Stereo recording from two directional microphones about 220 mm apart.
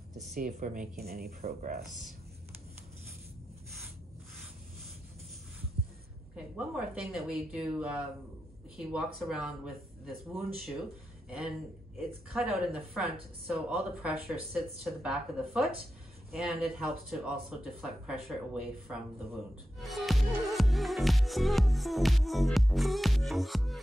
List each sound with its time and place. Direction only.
0.4 s speech: 40° right (ahead or behind)
6.3 s music: 5° right (ahead or behind)
11.2 s a man's voice: 5° right (ahead or behind)
12.3 s music: centre (ahead or behind)